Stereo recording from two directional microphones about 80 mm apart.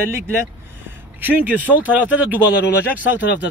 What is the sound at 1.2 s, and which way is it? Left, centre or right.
A man's voice, right.